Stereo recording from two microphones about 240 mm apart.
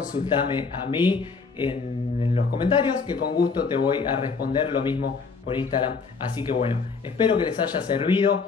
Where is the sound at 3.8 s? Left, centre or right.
Centre.